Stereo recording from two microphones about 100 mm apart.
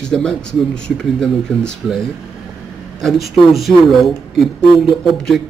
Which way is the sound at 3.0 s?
Centre (ahead or behind).